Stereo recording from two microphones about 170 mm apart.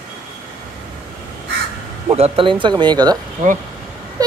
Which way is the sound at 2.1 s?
35° right (ahead or behind).